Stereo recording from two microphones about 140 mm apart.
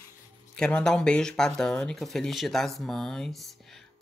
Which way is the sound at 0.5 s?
5° left (ahead or behind).